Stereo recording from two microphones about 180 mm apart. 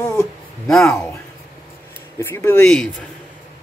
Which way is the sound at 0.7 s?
Centre (ahead or behind).